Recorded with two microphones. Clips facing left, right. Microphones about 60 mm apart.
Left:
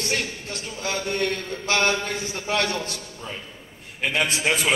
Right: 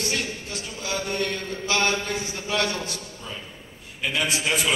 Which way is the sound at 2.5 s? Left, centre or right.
Left.